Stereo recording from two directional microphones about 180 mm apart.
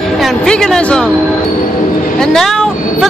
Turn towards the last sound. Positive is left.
turn(degrees=0)  # may be behind; listen again after turning